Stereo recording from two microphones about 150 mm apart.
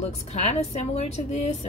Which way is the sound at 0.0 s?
45° left (ahead or behind).